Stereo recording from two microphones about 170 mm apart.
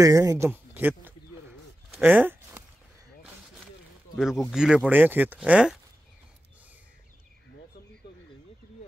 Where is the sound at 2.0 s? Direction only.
10° right (ahead or behind).